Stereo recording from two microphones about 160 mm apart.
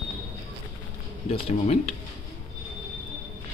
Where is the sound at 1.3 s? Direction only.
40° left (ahead or behind).